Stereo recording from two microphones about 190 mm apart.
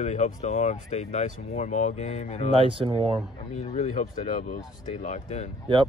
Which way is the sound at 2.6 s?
30° right (ahead or behind).